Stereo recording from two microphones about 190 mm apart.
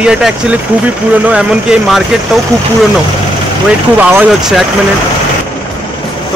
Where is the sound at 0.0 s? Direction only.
5° right (ahead or behind).